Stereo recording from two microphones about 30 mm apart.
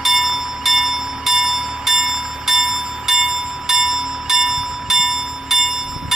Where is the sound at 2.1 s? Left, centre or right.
Right.